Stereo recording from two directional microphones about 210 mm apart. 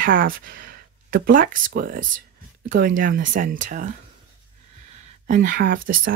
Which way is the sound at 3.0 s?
40° right (ahead or behind).